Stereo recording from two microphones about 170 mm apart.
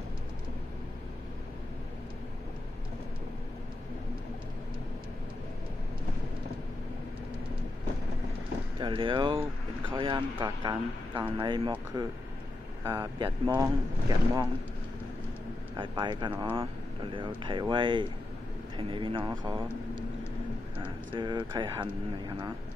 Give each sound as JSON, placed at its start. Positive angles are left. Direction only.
{"t": 8.7, "sound": "speech", "side_deg": -30}
{"t": 15.7, "sound": "speech", "side_deg": -25}
{"t": 20.8, "sound": "speech", "side_deg": -25}